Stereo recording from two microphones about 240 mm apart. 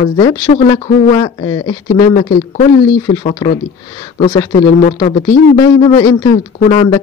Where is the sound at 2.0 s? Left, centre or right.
Centre.